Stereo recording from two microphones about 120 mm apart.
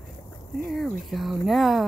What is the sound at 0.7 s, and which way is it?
Speech, centre (ahead or behind).